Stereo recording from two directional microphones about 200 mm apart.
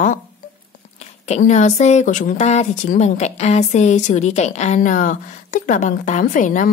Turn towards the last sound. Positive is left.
turn(degrees=40)  # may be behind; listen again after turning